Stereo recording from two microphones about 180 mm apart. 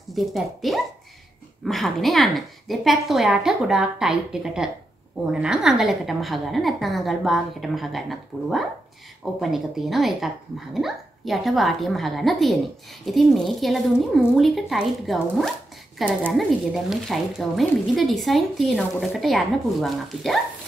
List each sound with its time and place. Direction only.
0.1 s speech: centre (ahead or behind)